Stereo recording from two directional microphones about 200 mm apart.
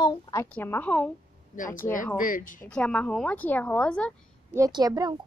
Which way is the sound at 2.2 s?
45° left (ahead or behind).